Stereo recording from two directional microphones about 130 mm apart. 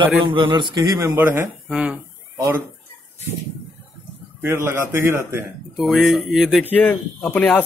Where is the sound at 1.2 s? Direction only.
15° right (ahead or behind).